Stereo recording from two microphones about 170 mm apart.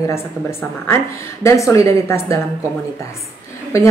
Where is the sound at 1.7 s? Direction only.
20° left (ahead or behind).